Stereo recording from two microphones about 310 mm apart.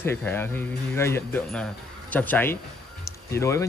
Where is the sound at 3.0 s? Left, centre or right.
Centre.